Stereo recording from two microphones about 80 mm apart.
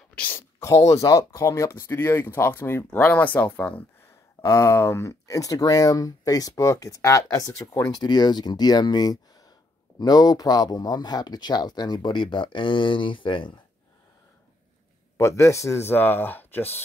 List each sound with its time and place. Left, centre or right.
0.1 s a sound: centre
0.6 s speech: left; by 3.8 s centre
4.4 s speech: left
7.9 s speech: left
15.1 s speech: left